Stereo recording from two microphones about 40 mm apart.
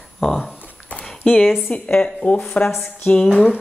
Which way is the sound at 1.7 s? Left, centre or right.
Left.